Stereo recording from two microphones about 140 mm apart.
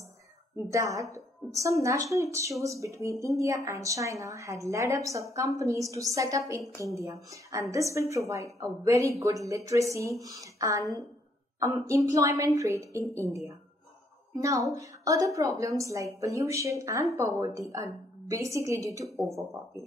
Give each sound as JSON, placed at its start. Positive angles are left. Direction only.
{"t": 0.7, "sound": "speech", "side_deg": -20}